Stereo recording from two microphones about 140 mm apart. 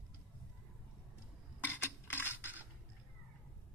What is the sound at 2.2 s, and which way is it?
Coin, 15° right (ahead or behind).